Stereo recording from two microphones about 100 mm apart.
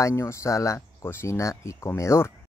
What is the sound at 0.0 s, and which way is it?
Speech, 25° left (ahead or behind).